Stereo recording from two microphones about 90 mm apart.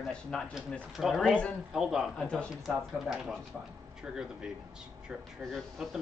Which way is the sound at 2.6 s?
5° right (ahead or behind).